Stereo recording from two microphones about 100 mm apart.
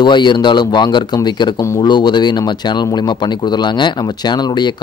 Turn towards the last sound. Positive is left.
turn(degrees=45)  # may be behind; listen again after turning